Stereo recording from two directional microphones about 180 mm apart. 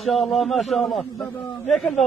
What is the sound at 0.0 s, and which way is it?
Speech, centre (ahead or behind).